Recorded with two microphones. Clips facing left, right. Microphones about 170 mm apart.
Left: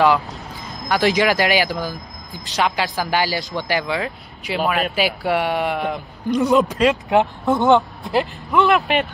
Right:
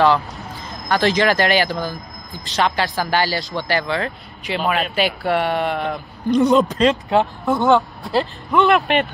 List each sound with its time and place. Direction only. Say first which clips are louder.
0.3 s a sound: right 1 dB; centre (ahead or behind)
0.8 s speech: even; 15° left (ahead or behind)
8.5 s speech: right 2 dB; centre (ahead or behind)